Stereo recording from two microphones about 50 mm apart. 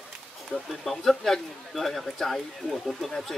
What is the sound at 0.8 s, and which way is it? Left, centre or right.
Speech, centre.